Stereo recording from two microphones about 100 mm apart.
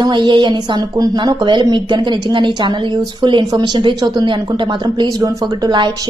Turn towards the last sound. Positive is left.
turn(degrees=-45)  # may be behind; listen again after turning